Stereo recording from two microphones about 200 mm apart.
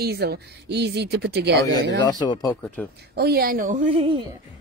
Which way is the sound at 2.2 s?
20° left (ahead or behind).